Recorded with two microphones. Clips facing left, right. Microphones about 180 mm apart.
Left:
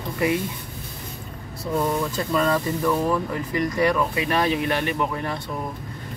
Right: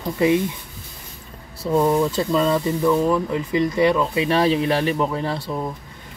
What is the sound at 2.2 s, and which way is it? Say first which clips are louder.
Speech: right 3 dB; 20° right (ahead or behind).